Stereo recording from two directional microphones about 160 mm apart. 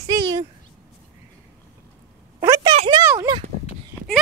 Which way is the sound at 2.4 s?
20° right (ahead or behind).